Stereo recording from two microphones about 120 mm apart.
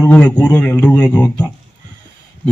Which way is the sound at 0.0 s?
15° left (ahead or behind).